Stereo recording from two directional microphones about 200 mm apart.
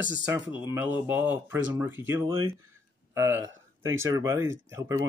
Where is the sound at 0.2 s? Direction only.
10° right (ahead or behind).